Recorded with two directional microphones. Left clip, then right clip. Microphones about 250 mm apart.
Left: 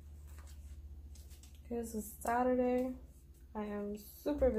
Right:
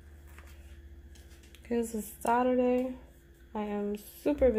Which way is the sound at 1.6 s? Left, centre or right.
Right.